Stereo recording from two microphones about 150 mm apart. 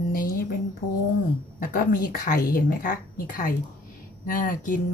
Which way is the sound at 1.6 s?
70° left (ahead or behind).